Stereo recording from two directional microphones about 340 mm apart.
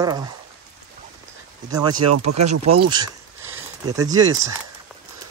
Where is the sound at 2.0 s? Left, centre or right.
Right.